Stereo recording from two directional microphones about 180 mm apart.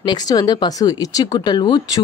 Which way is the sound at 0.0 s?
20° left (ahead or behind).